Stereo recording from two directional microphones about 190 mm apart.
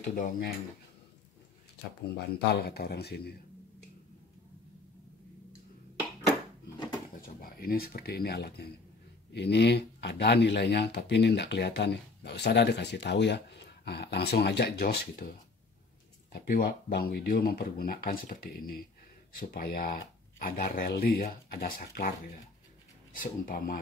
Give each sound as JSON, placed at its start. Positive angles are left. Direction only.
{"t": 0.0, "sound": "speech", "side_deg": 40}
{"t": 2.0, "sound": "speech", "side_deg": 55}
{"t": 7.2, "sound": "speech", "side_deg": 50}
{"t": 16.4, "sound": "speech", "side_deg": 50}